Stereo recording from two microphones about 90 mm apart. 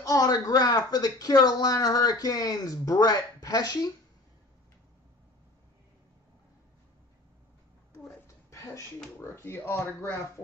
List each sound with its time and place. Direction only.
0.0 s speech: 40° left (ahead or behind)
8.5 s a sound: 35° left (ahead or behind)
9.2 s speech: 30° left (ahead or behind)